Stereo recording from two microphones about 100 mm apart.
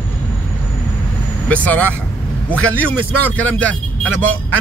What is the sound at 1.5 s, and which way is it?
Speech, 15° left (ahead or behind).